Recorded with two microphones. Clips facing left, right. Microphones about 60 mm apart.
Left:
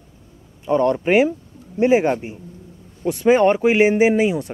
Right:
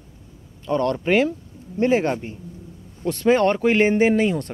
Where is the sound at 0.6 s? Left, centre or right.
Centre.